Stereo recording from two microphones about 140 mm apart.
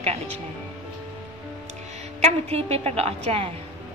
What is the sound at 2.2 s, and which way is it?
A woman's voice, 50° right (ahead or behind).